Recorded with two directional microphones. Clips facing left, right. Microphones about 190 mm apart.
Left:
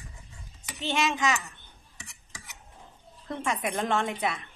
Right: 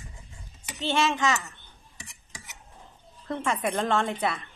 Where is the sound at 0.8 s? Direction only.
15° left (ahead or behind).